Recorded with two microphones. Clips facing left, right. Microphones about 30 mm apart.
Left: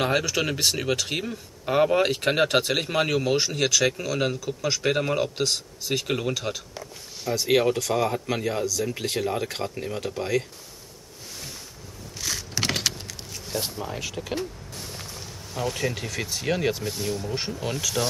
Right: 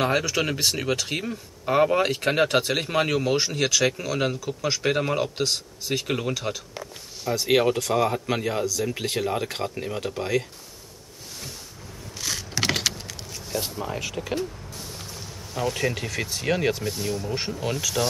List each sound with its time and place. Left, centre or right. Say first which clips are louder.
0.0 s speech: right 1 dB; centre
12.2 s vehicle: right 1 dB; centre
14.0 s speech: right 1 dB; centre